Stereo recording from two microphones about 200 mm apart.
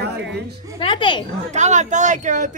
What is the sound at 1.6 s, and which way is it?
Speech, 35° right (ahead or behind).